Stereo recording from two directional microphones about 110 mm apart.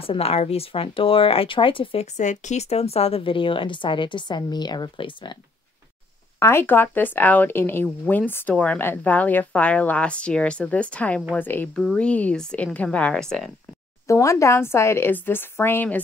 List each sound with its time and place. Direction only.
0.0 s speech: 65° left (ahead or behind)
2.1 s a woman's voice: 90° left; by 5.3 s 50° left (ahead or behind)
6.4 s speech: 20° left (ahead or behind)
11.7 s speech: 5° left (ahead or behind)
14.0 s speech: 25° left (ahead or behind)